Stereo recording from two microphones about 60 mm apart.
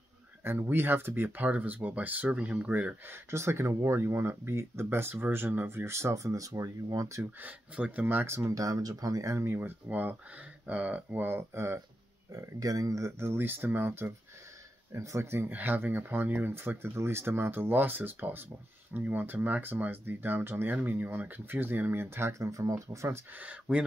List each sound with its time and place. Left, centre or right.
0.4 s speech: right
3.1 s speech: right
4.8 s speech: right
7.7 s speech: right
8.5 s speech: right
9.3 s speech: right
9.6 s speech: right
12.3 s speech: right
13.2 s speech: right
15.5 s speech: right
22.4 s speech: right
23.3 s speech: right